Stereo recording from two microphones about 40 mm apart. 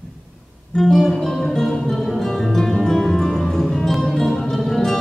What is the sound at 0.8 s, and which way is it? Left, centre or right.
Music, centre.